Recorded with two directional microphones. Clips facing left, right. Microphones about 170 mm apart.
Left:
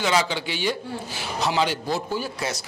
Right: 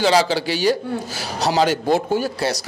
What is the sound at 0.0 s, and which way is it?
Speech, 35° right (ahead or behind).